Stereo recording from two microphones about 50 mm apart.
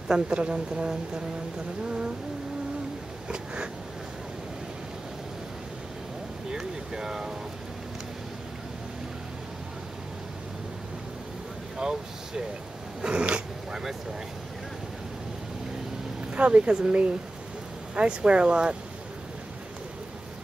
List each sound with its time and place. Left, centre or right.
0.1 s speech: right
3.3 s speech: centre
6.5 s speech: centre
11.8 s speech: centre
16.3 s speech: right